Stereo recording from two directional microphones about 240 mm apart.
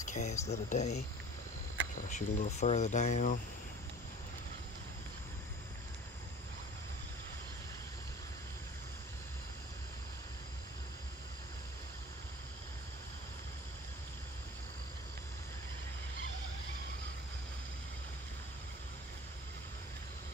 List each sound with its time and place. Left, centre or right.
0.0 s speech: left
2.0 s speech: left